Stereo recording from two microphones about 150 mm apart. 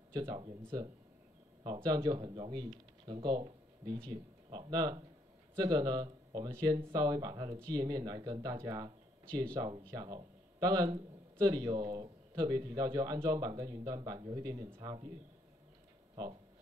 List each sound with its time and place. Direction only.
0.1 s speech: 25° right (ahead or behind)
1.6 s a man's voice: 25° right (ahead or behind)